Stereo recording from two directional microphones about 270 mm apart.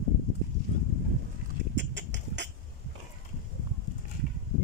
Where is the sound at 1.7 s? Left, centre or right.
Right.